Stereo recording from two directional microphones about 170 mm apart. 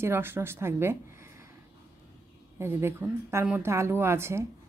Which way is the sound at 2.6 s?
15° right (ahead or behind).